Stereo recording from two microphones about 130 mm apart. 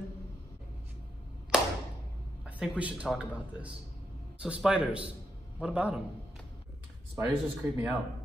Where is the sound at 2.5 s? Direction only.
10° right (ahead or behind).